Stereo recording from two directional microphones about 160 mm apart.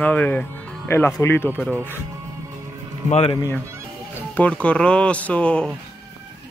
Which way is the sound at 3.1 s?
40° left (ahead or behind).